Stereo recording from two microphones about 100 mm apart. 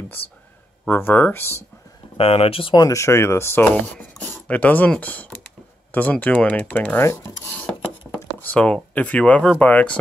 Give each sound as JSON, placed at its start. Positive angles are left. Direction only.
{"t": 0.8, "sound": "speech", "side_deg": 20}
{"t": 2.1, "sound": "speech", "side_deg": 75}
{"t": 2.7, "sound": "speech", "side_deg": 35}
{"t": 3.6, "sound": "speech", "side_deg": 15}
{"t": 7.1, "sound": "speech", "side_deg": 30}
{"t": 8.0, "sound": "a sound", "side_deg": 5}
{"t": 8.4, "sound": "speech", "side_deg": 15}